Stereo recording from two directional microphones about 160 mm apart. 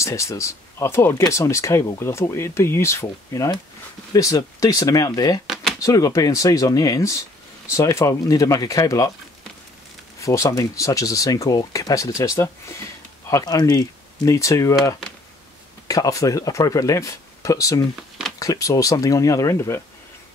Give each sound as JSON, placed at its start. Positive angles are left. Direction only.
{"t": 0.0, "sound": "speech", "side_deg": 20}
{"t": 5.5, "sound": "a sound", "side_deg": 0}
{"t": 5.8, "sound": "speech", "side_deg": 20}
{"t": 10.2, "sound": "speech", "side_deg": 20}
{"t": 15.9, "sound": "speech", "side_deg": 20}